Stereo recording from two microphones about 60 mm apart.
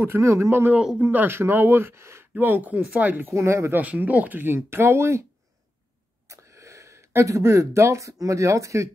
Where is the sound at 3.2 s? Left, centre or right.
Right.